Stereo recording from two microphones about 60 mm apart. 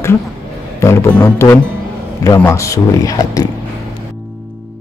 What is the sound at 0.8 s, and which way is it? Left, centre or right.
Speech, left.